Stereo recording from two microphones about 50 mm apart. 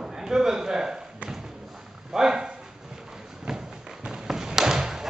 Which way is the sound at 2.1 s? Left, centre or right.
Centre.